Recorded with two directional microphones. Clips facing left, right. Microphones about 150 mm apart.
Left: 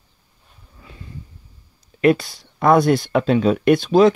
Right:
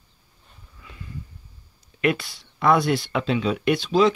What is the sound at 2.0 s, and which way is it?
Speech, 35° left (ahead or behind).